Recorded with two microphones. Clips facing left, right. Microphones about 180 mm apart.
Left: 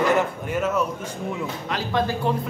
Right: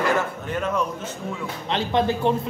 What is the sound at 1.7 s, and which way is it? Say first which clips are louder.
Speech: right 3 dB; 25° right (ahead or behind).